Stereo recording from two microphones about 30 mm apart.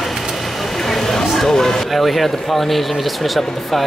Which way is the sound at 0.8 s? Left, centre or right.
Centre.